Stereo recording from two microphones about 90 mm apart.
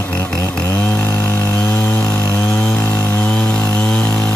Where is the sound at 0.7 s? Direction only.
25° left (ahead or behind).